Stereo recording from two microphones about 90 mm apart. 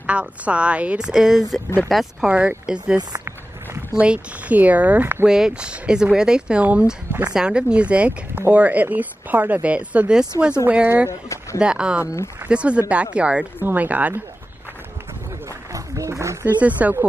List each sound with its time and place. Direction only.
0.0 s speech: 15° right (ahead or behind)
2.2 s speech: 10° right (ahead or behind)
5.2 s speech: 10° right (ahead or behind)
11.1 s speech: 35° left (ahead or behind)
11.6 s speech: 10° right (ahead or behind)
15.7 s a sound: 35° right (ahead or behind)
16.4 s speech: 20° right (ahead or behind)